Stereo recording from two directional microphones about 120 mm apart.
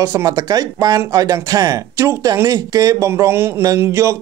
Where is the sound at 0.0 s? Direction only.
30° right (ahead or behind).